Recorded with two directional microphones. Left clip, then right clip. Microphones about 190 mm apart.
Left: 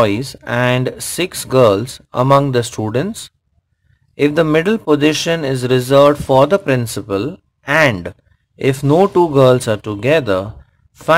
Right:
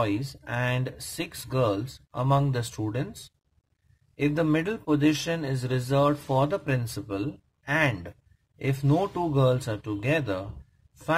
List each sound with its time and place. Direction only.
0.0 s speech: 30° left (ahead or behind)